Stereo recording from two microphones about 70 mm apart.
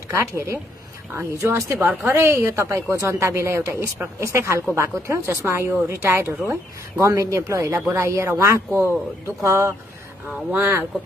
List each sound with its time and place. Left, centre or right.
0.1 s speech: right